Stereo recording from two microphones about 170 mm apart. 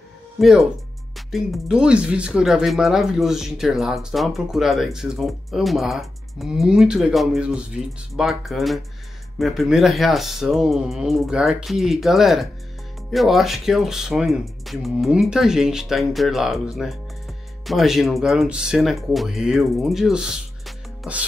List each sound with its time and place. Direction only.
0.4 s speech: centre (ahead or behind)